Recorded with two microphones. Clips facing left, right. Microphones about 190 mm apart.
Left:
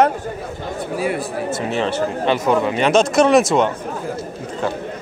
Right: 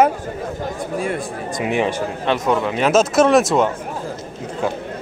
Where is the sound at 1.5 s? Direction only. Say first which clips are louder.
Right 3 dB; 15° right (ahead or behind).